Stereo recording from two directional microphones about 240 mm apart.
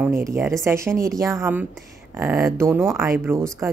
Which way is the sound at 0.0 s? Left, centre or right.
Centre.